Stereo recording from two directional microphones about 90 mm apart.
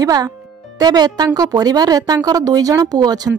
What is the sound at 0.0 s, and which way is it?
A woman's voice, 45° right (ahead or behind).